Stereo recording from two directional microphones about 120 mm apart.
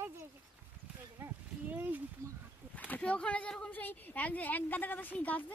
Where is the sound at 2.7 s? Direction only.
15° left (ahead or behind).